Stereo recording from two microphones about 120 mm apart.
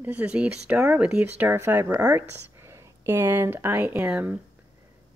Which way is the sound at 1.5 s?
25° right (ahead or behind).